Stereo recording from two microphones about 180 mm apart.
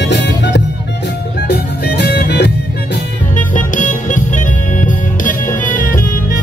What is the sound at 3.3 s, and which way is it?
Music, 45° left (ahead or behind).